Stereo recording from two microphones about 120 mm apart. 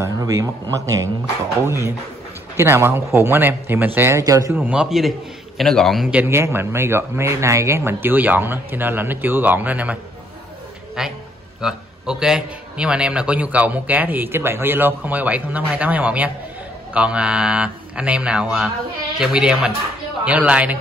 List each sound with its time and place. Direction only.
0.0 s speech: 25° right (ahead or behind)
2.5 s speech: 20° right (ahead or behind)
4.6 s a man's voice: 10° right (ahead or behind)
6.2 s a man's voice: 20° right (ahead or behind)
11.0 s a man's voice: 5° right (ahead or behind)